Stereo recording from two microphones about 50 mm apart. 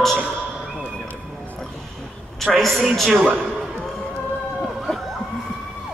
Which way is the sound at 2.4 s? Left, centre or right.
Centre.